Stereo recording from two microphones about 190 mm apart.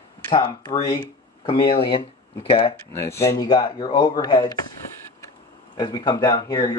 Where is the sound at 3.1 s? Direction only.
15° left (ahead or behind).